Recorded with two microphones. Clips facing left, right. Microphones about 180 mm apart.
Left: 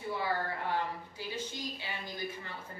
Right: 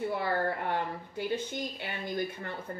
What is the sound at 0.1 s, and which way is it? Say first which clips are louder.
Speech: right 4 dB; 60° right (ahead or behind).